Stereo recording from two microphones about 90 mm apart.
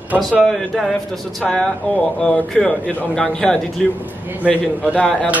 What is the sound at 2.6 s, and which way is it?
Speech, 5° left (ahead or behind).